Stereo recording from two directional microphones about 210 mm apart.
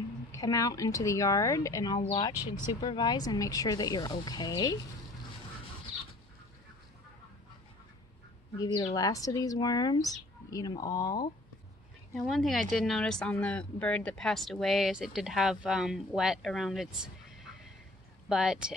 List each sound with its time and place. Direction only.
0.3 s speech: 15° left (ahead or behind)
8.5 s speech: 20° left (ahead or behind)
12.3 s speech: centre (ahead or behind)
18.3 s speech: 5° right (ahead or behind)